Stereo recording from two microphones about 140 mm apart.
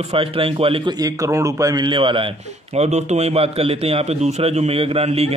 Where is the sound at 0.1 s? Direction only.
40° right (ahead or behind).